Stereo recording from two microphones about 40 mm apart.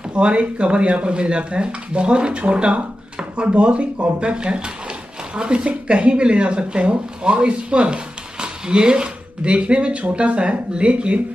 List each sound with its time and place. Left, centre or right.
0.1 s speech: right